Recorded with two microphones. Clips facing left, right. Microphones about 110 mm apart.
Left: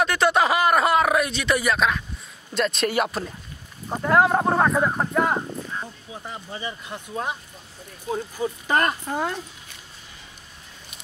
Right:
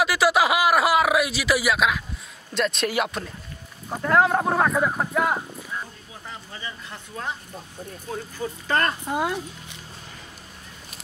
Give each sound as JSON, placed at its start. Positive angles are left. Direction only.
{"t": 0.0, "sound": "speech", "side_deg": -5}
{"t": 5.8, "sound": "speech", "side_deg": 20}
{"t": 9.0, "sound": "speech", "side_deg": -10}